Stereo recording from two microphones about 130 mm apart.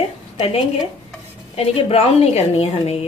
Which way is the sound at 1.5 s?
50° left (ahead or behind).